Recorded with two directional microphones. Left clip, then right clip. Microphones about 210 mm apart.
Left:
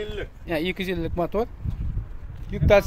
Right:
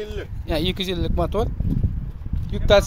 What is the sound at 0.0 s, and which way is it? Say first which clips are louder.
Speech: even; 40° right (ahead or behind).